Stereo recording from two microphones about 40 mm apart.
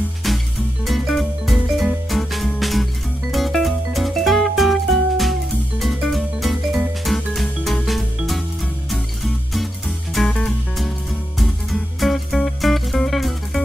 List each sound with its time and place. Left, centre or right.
0.8 s music: centre
8.9 s music: centre
10.2 s music: left
11.3 s music: centre